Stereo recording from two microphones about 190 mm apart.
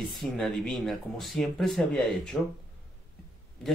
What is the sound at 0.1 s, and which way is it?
Speech, centre (ahead or behind).